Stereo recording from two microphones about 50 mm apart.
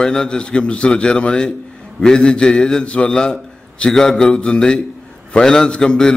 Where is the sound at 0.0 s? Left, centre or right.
Centre.